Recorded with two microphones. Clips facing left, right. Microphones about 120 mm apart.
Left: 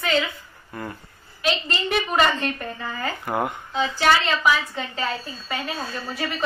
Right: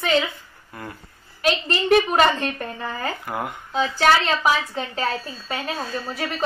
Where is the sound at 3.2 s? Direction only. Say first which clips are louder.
Left 3 dB; centre (ahead or behind).